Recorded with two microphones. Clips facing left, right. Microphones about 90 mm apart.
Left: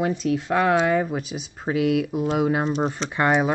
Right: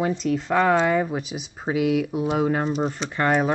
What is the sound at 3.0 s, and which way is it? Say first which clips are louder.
Speech: left 1 dB; 15° left (ahead or behind).